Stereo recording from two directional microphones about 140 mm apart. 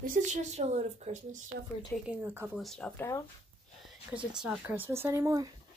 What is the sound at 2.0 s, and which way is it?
Speech, 10° right (ahead or behind).